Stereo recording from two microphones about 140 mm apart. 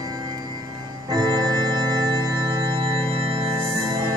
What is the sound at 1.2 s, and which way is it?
Organ, 30° right (ahead or behind).